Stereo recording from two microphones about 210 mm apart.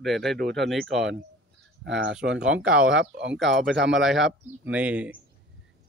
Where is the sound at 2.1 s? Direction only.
5° right (ahead or behind).